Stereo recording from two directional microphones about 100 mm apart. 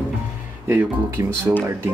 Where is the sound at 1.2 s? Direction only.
35° right (ahead or behind).